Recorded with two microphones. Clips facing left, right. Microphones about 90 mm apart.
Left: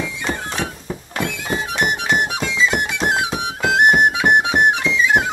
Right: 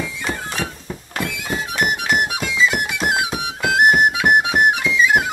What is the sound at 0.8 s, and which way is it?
Thunk, 5° left (ahead or behind).